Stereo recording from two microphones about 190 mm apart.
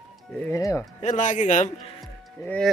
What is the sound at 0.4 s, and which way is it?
Speech, 15° left (ahead or behind).